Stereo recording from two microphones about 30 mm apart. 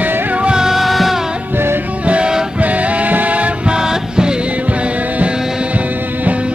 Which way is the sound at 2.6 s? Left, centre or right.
Right.